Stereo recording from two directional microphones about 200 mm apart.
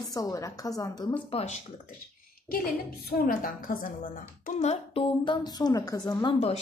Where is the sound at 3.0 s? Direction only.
45° left (ahead or behind).